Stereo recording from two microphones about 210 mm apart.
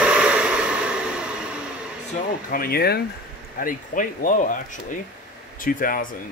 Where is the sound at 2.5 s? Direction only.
45° left (ahead or behind).